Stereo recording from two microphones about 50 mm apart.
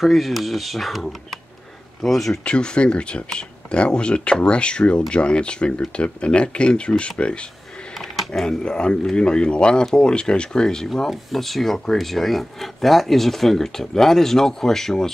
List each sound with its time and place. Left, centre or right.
0.0 s speech: centre
2.4 s speech: centre
8.4 s speech: centre
11.1 s speech: centre